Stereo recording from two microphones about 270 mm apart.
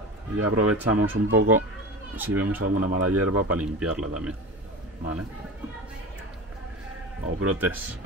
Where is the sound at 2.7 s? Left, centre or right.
Right.